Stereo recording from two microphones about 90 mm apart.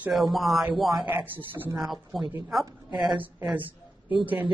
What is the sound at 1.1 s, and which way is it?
Speech, 20° right (ahead or behind).